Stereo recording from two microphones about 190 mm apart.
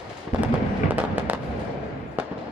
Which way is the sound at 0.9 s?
10° right (ahead or behind).